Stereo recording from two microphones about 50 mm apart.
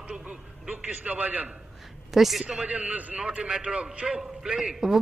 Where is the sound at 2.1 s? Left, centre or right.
Centre.